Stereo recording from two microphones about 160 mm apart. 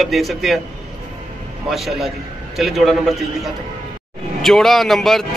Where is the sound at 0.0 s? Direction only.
Centre (ahead or behind).